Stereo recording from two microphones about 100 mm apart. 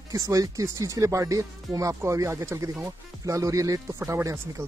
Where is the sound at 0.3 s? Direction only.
35° right (ahead or behind).